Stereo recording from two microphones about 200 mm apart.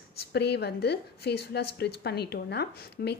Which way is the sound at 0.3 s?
55° left (ahead or behind).